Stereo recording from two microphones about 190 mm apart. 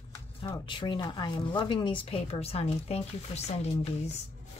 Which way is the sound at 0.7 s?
25° left (ahead or behind).